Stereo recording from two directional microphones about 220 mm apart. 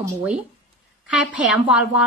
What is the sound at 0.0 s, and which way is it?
A woman's voice, 5° right (ahead or behind).